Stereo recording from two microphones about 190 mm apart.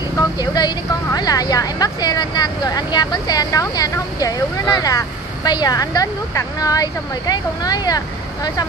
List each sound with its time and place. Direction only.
0.4 s a woman's voice: 20° left (ahead or behind)